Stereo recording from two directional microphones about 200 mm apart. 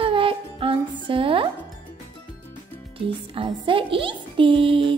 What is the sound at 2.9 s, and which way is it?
A child's voice, 25° right (ahead or behind).